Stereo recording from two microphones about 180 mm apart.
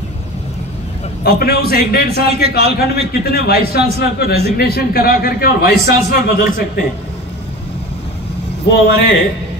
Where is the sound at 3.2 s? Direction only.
60° left (ahead or behind).